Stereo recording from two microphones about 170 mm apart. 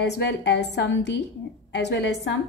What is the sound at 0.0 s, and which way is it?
A woman's voice, 85° left.